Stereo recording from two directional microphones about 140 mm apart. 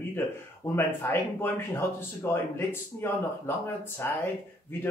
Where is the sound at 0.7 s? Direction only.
15° left (ahead or behind).